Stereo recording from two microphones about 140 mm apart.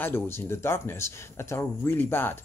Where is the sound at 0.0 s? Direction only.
15° left (ahead or behind).